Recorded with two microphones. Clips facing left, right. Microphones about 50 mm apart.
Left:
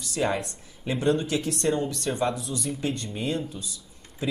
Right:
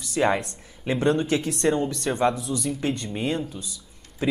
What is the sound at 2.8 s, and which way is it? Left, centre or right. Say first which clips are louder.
Speech: right 3 dB; right.